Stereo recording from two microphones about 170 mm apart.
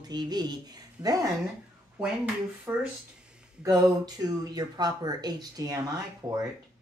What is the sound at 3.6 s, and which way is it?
Speech, 20° right (ahead or behind).